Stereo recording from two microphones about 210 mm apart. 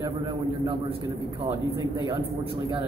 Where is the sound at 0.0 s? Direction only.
20° right (ahead or behind).